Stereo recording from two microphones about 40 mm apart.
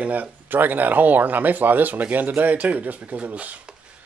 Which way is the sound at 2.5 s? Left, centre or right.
Right.